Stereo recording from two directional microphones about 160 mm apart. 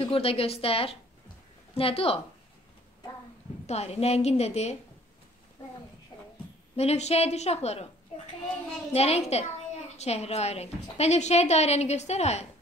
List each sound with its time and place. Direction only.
0.0 s a woman's voice: 35° left (ahead or behind)
3.6 s a woman's voice: 40° left (ahead or behind)
6.8 s a woman's voice: 40° left (ahead or behind)
8.9 s a woman's voice: 40° left (ahead or behind)